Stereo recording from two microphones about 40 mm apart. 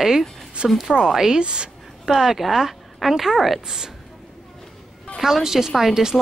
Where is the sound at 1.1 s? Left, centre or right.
Centre.